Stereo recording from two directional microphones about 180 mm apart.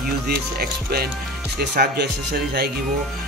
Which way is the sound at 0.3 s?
60° right (ahead or behind).